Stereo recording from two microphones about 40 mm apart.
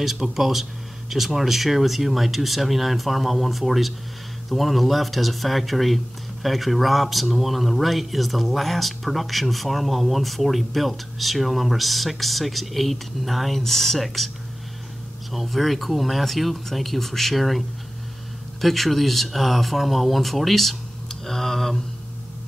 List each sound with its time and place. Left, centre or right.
0.0 s speech: centre
15.3 s speech: centre